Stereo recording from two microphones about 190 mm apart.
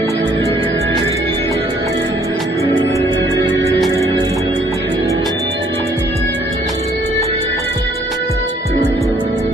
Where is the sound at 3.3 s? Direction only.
25° right (ahead or behind).